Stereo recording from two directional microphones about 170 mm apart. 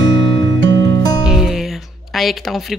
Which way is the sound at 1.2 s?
Centre (ahead or behind).